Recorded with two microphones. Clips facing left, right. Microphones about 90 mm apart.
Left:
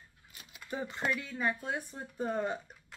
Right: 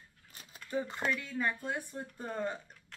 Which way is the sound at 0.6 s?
15° left (ahead or behind).